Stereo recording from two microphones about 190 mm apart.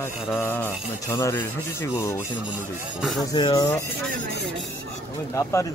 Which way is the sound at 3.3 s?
20° left (ahead or behind).